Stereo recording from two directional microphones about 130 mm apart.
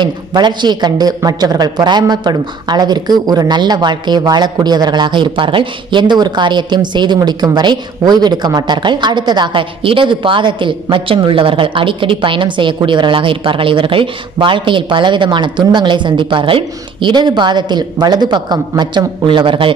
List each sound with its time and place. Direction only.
0.0 s speech: 35° right (ahead or behind)